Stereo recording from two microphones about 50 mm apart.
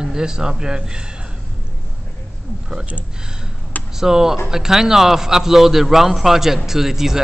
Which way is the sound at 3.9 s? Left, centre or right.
Centre.